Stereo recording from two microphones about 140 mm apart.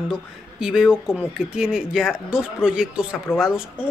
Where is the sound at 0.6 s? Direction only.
5° right (ahead or behind).